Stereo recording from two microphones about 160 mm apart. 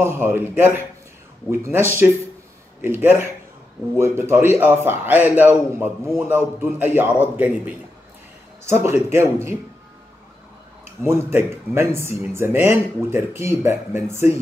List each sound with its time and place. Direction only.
0.0 s speech: 15° right (ahead or behind)
11.0 s speech: 15° right (ahead or behind)